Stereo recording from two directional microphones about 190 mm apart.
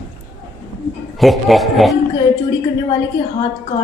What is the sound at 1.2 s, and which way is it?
Speech, centre (ahead or behind).